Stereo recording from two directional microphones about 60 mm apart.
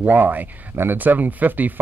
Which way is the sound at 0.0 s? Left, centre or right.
Right.